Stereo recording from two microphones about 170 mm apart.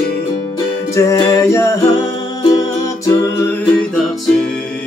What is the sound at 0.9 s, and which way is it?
Music, 20° left (ahead or behind).